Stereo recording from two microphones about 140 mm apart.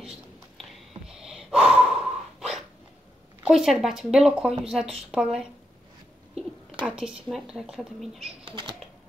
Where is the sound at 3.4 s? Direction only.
Centre (ahead or behind).